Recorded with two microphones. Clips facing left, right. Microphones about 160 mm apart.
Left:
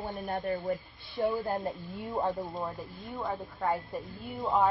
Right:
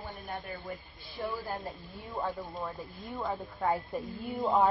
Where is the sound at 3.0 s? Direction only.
Centre (ahead or behind).